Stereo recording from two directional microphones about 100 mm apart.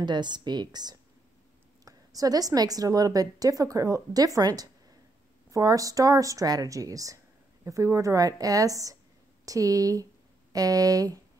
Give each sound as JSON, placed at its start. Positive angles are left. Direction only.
{"t": 0.0, "sound": "a woman's voice", "side_deg": -50}